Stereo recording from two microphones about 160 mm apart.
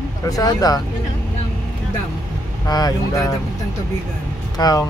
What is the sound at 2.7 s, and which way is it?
Speech, 25° left (ahead or behind).